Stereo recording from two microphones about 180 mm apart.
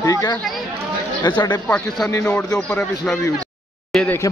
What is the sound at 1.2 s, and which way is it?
Speech, 25° left (ahead or behind).